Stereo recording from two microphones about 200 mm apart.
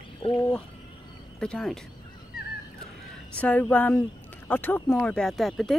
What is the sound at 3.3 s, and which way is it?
Speech, 5° left (ahead or behind).